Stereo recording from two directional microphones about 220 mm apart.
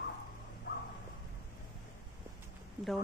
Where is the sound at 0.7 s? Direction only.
45° left (ahead or behind).